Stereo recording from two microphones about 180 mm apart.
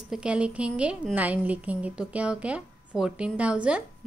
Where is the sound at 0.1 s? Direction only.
5° right (ahead or behind).